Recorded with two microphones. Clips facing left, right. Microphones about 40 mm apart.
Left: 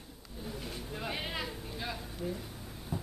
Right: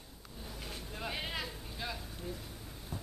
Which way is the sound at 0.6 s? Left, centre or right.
Centre.